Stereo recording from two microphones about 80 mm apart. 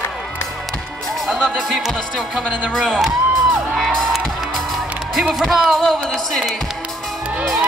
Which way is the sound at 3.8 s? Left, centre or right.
Centre.